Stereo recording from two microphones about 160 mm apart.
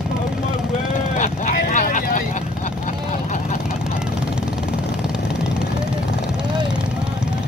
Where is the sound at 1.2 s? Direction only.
55° left (ahead or behind).